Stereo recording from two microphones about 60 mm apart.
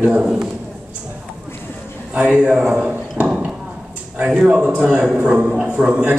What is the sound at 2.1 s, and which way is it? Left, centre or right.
A man's voice, centre.